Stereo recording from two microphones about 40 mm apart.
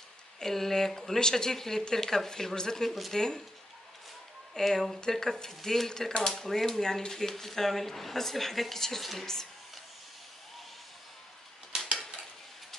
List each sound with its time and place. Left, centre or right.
0.4 s speech: centre
4.6 s speech: centre